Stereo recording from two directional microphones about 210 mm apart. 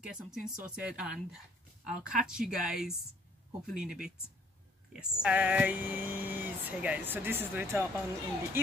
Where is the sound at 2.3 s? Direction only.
Centre (ahead or behind).